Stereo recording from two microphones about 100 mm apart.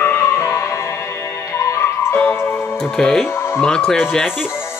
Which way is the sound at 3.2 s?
25° left (ahead or behind).